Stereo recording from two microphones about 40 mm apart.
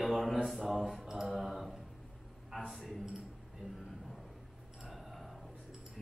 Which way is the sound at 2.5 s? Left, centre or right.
Centre.